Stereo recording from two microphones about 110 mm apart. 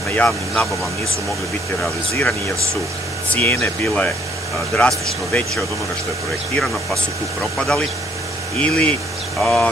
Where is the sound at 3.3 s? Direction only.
15° left (ahead or behind).